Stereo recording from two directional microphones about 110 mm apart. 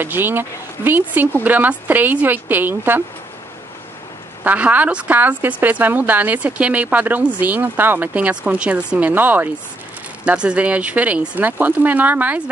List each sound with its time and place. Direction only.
0.0 s a woman's voice: 20° right (ahead or behind)
4.5 s a woman's voice: 15° right (ahead or behind)